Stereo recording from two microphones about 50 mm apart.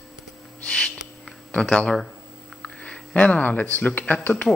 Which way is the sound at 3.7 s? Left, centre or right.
Left.